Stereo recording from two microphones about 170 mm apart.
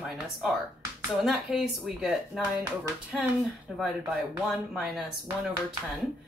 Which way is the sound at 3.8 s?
Centre (ahead or behind).